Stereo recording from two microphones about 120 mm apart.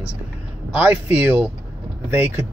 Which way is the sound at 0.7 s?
15° right (ahead or behind).